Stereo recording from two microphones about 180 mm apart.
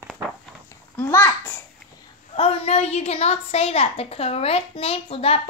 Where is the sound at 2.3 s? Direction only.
30° left (ahead or behind).